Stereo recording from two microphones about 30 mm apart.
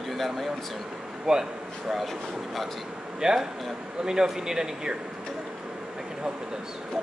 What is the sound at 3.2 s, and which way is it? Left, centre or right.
Speech, centre.